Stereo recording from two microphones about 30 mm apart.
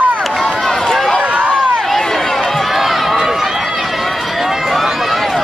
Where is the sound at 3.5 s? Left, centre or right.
Centre.